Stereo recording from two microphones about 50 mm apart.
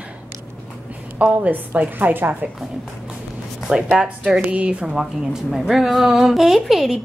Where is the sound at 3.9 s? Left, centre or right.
Centre.